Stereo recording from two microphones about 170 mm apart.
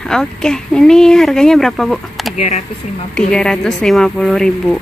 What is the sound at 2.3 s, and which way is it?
Speech, 40° left (ahead or behind).